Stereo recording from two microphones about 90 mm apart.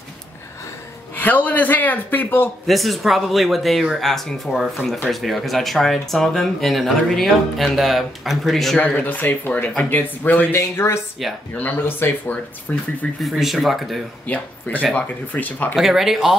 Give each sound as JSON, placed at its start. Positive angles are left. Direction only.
{"t": 1.1, "sound": "speech", "side_deg": 20}
{"t": 2.6, "sound": "speech", "side_deg": 0}
{"t": 8.7, "sound": "speech", "side_deg": 15}
{"t": 13.2, "sound": "speech", "side_deg": 0}
{"t": 14.2, "sound": "speech", "side_deg": 15}
{"t": 15.7, "sound": "speech", "side_deg": 0}